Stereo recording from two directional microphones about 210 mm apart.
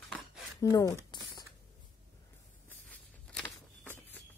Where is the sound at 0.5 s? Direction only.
15° left (ahead or behind).